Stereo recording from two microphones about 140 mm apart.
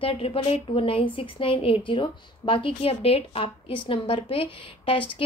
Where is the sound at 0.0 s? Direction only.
40° left (ahead or behind).